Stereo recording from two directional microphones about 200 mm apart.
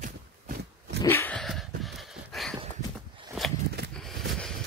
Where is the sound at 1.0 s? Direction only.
10° left (ahead or behind).